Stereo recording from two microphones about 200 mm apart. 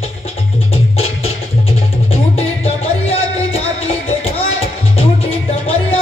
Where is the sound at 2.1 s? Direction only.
30° left (ahead or behind).